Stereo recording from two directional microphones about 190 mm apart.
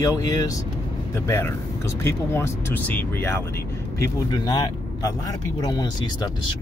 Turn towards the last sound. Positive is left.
turn(degrees=20)  # may be behind; listen again after turning